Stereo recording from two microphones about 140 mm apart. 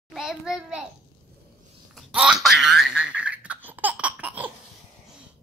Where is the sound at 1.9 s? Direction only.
5° right (ahead or behind).